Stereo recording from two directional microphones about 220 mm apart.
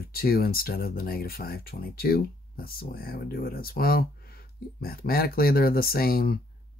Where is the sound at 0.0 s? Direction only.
45° left (ahead or behind).